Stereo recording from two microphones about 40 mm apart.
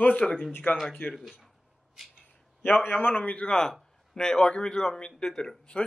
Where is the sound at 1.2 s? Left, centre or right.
Centre.